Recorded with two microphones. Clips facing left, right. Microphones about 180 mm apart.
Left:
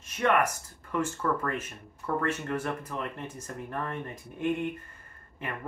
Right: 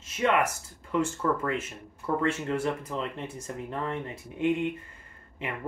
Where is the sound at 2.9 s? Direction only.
25° right (ahead or behind).